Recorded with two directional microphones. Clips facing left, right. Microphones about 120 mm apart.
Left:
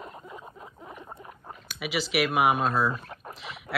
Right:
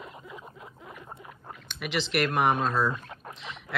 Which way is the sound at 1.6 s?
5° left (ahead or behind).